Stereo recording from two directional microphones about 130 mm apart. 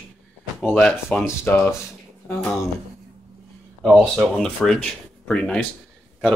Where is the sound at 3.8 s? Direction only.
Centre (ahead or behind).